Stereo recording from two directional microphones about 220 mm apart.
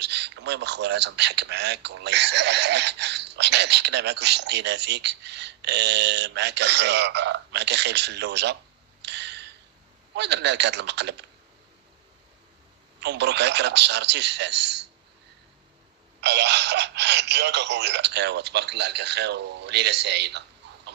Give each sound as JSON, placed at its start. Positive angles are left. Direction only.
{"t": 0.0, "sound": "a man's voice", "side_deg": -50}
{"t": 9.0, "sound": "tick-tock", "side_deg": -50}
{"t": 10.1, "sound": "a man's voice", "side_deg": -50}
{"t": 13.0, "sound": "a man's voice", "side_deg": -50}
{"t": 16.2, "sound": "a man's voice", "side_deg": -50}